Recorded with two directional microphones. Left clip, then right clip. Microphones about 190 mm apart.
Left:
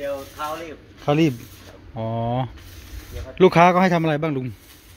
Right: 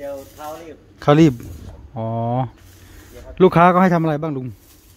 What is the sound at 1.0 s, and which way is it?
Speech, 35° right (ahead or behind).